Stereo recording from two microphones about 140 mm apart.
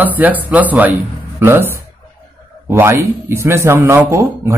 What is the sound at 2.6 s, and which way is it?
A man's voice, 15° right (ahead or behind).